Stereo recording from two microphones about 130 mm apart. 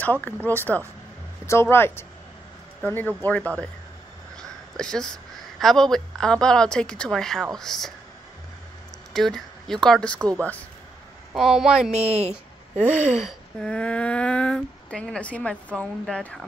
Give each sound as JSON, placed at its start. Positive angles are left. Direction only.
{"t": 0.0, "sound": "a woman's voice", "side_deg": 15}
{"t": 9.1, "sound": "speech", "side_deg": 5}
{"t": 11.3, "sound": "a woman's voice", "side_deg": -5}
{"t": 12.3, "sound": "a sound", "side_deg": 15}
{"t": 13.1, "sound": "speech", "side_deg": -5}
{"t": 13.7, "sound": "speech", "side_deg": 10}